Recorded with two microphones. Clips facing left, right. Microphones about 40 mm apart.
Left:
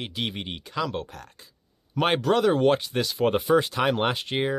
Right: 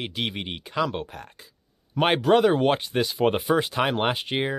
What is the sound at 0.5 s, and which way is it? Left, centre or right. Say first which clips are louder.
Speech: right 4 dB; centre.